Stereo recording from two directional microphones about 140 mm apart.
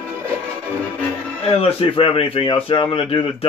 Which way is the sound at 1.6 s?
40° left (ahead or behind).